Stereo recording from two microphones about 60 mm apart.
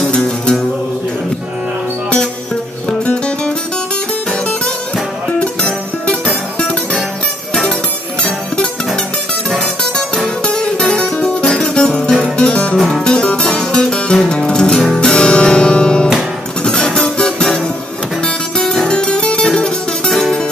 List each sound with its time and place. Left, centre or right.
0.0 s music: centre
2.9 s music: centre
5.4 s music: centre
9.5 s music: centre